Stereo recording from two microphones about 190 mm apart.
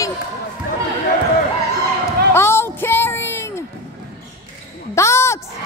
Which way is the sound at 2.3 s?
10° left (ahead or behind).